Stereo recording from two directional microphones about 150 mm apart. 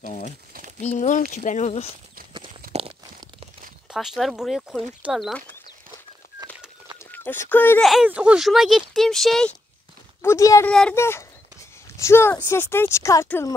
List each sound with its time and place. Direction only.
0.0 s speech: 55° left (ahead or behind)
2.6 s crunch: 80° right
3.9 s speech: centre (ahead or behind)
7.0 s speech: 15° left (ahead or behind)
7.8 s speech: 5° right (ahead or behind)
10.2 s speech: 20° left (ahead or behind)
10.7 s speech: 5° left (ahead or behind)
11.0 s speech: 15° left (ahead or behind)